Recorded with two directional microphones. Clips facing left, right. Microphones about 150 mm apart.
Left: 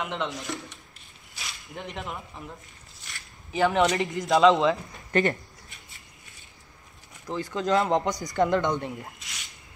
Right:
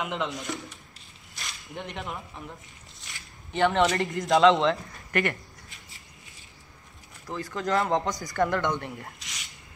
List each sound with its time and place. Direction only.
0.0 s speech: centre (ahead or behind)
3.5 s speech: 5° left (ahead or behind)
4.9 s speech: 25° left (ahead or behind)
7.2 s speech: 20° left (ahead or behind)
9.2 s squish: centre (ahead or behind)